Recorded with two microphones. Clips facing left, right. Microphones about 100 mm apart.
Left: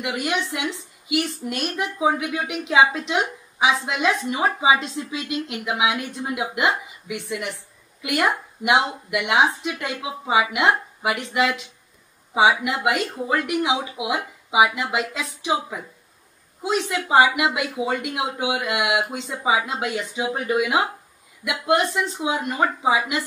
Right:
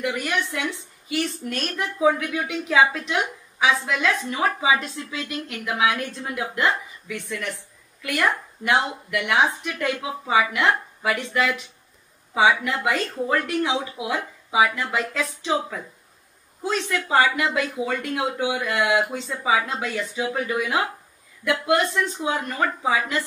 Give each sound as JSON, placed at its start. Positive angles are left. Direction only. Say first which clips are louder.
{"t": 0.0, "sound": "a woman's voice", "louder": "even", "side_deg": 20}